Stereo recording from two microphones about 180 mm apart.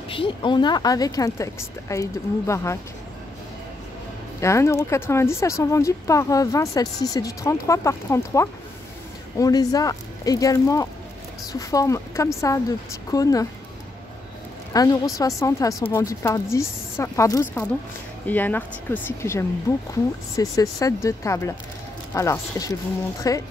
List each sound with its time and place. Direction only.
0.1 s a woman's voice: 30° left (ahead or behind)
4.4 s a woman's voice: 15° left (ahead or behind)
14.7 s a woman's voice: 20° left (ahead or behind)